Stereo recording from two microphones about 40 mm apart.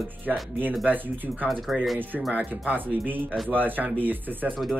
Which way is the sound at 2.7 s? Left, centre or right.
Right.